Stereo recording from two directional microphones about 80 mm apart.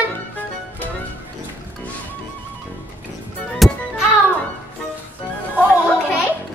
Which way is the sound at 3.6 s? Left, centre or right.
Centre.